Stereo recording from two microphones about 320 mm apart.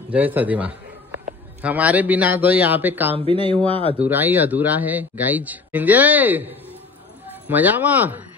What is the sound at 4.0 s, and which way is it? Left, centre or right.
Speech, centre.